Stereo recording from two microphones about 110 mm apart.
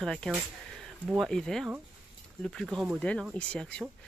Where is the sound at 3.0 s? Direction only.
15° left (ahead or behind).